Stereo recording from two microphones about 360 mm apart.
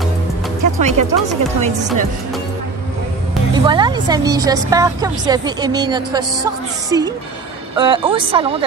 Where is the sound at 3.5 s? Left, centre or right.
Centre.